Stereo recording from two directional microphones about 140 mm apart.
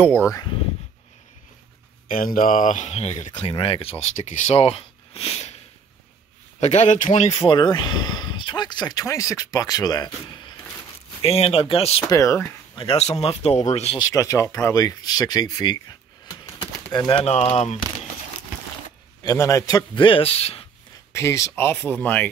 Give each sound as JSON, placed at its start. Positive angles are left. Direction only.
{"t": 0.3, "sound": "speech", "side_deg": 30}
{"t": 2.0, "sound": "speech", "side_deg": 85}
{"t": 4.1, "sound": "speech", "side_deg": 55}
{"t": 6.6, "sound": "speech", "side_deg": 55}
{"t": 7.3, "sound": "speech", "side_deg": 35}
{"t": 11.1, "sound": "speech", "side_deg": 45}
{"t": 12.1, "sound": "speech", "side_deg": 25}
{"t": 12.7, "sound": "speech", "side_deg": 45}
{"t": 13.9, "sound": "speech", "side_deg": 25}
{"t": 17.2, "sound": "speech", "side_deg": 45}
{"t": 19.2, "sound": "speech", "side_deg": 25}
{"t": 21.1, "sound": "speech", "side_deg": 20}